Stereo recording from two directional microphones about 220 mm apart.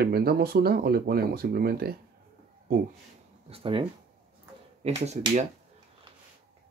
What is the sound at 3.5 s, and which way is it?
Speech, 25° right (ahead or behind).